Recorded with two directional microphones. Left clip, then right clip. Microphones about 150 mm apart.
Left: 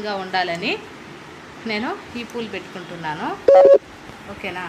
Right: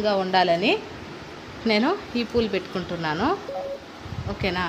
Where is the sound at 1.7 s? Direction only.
65° right (ahead or behind).